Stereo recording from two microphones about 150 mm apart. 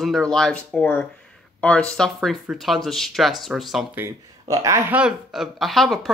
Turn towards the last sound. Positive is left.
turn(degrees=0)  # may be behind; listen again after turning